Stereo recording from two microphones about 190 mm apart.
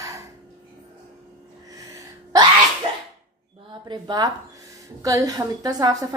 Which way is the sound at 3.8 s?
20° right (ahead or behind).